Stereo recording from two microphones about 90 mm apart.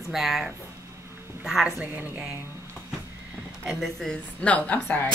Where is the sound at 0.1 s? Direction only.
5° right (ahead or behind).